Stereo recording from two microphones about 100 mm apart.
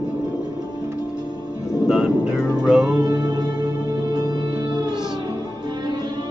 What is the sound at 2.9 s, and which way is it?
Music, 40° right (ahead or behind).